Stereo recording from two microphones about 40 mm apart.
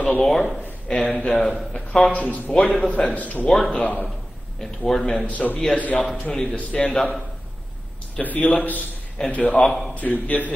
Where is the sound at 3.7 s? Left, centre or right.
Left.